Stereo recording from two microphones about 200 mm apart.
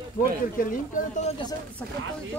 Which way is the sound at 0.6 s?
45° left (ahead or behind).